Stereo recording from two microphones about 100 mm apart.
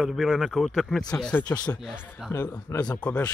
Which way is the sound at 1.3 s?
15° left (ahead or behind).